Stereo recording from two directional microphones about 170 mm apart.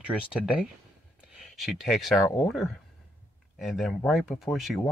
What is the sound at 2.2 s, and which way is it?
Speech, 20° left (ahead or behind).